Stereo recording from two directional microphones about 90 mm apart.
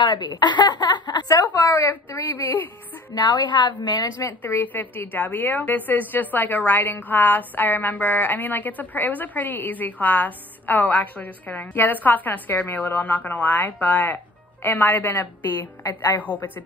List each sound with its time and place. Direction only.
0.0 s speech: 50° left (ahead or behind)
1.3 s speech: 40° left (ahead or behind)
1.9 s a woman's voice: 30° left (ahead or behind)
3.2 s a woman's voice: 55° left (ahead or behind)
4.4 s a woman's voice: 25° left (ahead or behind)